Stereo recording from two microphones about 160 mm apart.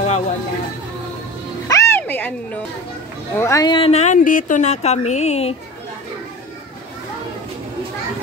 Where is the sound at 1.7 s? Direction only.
15° left (ahead or behind).